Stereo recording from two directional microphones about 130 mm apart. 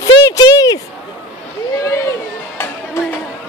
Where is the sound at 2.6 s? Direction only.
20° left (ahead or behind).